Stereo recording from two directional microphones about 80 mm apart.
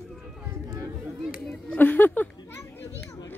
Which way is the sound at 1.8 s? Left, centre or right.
Left.